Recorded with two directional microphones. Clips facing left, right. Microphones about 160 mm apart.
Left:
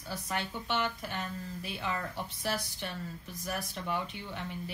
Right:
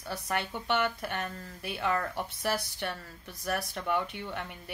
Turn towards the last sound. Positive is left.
turn(degrees=-60)  # may be behind; listen again after turning